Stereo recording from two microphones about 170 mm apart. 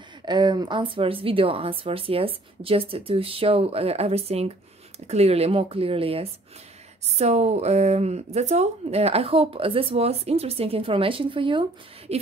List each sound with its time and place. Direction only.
0.2 s speech: 25° right (ahead or behind)